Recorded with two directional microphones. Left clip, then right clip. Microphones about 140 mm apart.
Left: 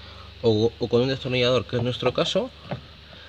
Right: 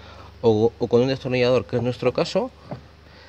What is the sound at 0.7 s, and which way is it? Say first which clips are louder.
Speech: right 3 dB; 10° right (ahead or behind).